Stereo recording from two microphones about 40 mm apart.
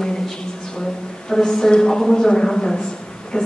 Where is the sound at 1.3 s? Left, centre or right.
Centre.